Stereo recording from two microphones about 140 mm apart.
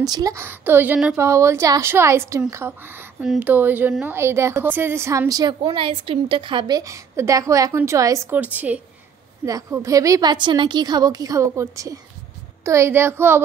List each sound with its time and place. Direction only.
0.1 s a woman's voice: 25° right (ahead or behind)
6.8 s a woman's voice: 20° right (ahead or behind)
9.5 s a woman's voice: 20° right (ahead or behind)